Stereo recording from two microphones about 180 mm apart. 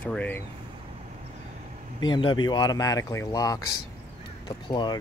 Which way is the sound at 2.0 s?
25° left (ahead or behind).